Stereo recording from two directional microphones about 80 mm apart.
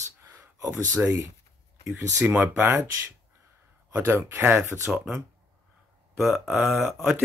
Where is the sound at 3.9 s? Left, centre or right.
Right.